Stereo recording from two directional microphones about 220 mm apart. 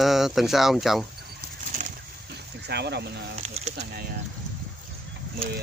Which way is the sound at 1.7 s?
35° right (ahead or behind).